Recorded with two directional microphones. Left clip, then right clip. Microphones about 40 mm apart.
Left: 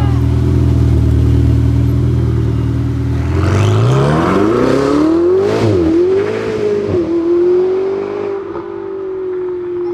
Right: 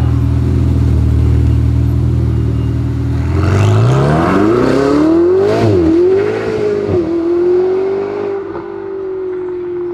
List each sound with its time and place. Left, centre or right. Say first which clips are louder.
3.5 s vehicle: right 1 dB; left